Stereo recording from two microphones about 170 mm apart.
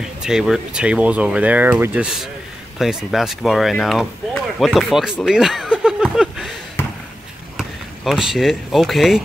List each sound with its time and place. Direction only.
0.2 s speech: 5° right (ahead or behind)
7.5 s speech: centre (ahead or behind)